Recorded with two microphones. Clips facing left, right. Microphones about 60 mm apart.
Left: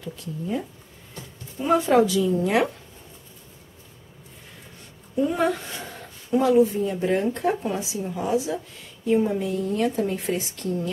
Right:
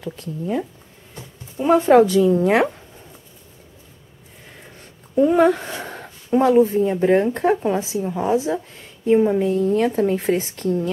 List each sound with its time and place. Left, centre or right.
0.0 s speech: right
1.1 s a sound: right
1.8 s a woman's voice: right
5.3 s a woman's voice: right